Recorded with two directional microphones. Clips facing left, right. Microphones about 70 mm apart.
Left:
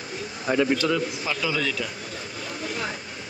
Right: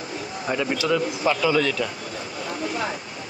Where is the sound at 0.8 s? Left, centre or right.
Right.